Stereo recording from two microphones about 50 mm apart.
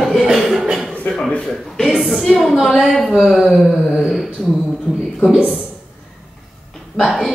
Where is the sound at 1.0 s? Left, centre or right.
Centre.